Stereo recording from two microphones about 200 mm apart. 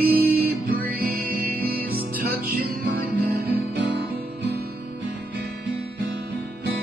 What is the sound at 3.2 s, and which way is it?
Music, 50° right (ahead or behind).